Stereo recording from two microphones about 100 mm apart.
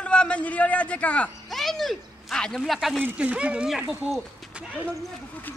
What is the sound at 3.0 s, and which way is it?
Speech, 15° right (ahead or behind).